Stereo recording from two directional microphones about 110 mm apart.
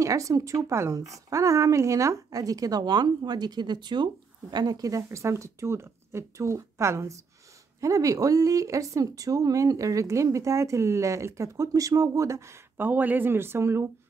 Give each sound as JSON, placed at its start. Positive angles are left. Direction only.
{"t": 0.0, "sound": "speech", "side_deg": -30}